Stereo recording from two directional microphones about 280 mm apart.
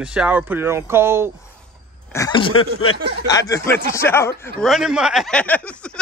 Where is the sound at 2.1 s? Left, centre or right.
Centre.